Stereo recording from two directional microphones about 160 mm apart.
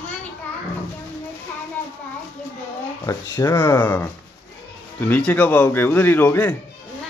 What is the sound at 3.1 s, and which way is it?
Speech, 20° left (ahead or behind).